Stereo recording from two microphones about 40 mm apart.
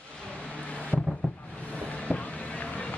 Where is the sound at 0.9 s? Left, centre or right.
Centre.